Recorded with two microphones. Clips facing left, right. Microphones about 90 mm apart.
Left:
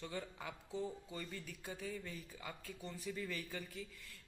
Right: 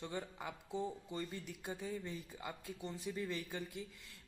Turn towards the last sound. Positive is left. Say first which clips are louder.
# right 2 dB
turn(degrees=-20)  # may be behind; listen again after turning